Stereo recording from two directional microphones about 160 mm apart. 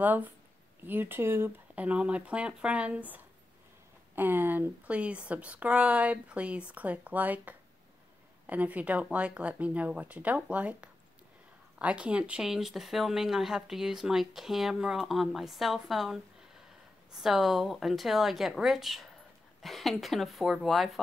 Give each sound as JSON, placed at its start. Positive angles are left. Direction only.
{"t": 0.0, "sound": "speech", "side_deg": -10}